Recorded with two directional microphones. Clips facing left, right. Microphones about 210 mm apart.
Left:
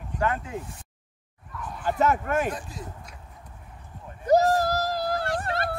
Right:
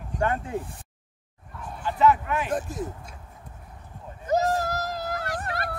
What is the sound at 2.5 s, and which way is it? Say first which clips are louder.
Speech: right 8 dB; 50° right (ahead or behind).